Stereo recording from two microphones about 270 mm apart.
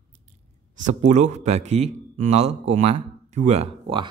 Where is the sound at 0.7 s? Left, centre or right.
Right.